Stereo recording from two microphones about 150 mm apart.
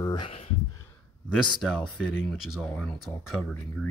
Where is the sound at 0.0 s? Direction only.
30° left (ahead or behind).